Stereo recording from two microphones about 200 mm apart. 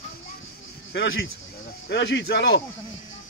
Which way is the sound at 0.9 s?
65° left (ahead or behind).